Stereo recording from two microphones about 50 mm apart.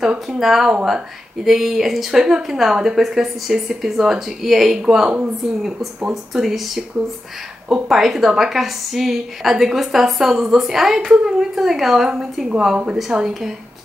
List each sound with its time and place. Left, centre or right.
0.0 s a woman's voice: centre
6.3 s a woman's voice: centre